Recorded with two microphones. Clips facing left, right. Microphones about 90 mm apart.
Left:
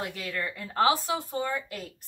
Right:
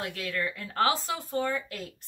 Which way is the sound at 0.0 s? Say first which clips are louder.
Right 1 dB; 5° left (ahead or behind).